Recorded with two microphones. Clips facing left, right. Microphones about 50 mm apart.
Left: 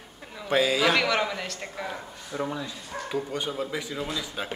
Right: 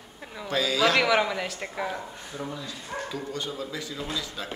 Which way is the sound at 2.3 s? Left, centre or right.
Left.